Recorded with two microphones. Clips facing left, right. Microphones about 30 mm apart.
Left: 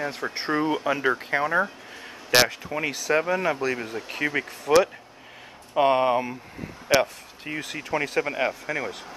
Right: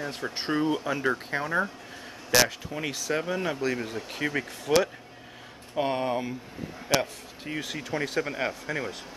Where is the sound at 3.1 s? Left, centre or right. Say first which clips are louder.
Left 6 dB; left.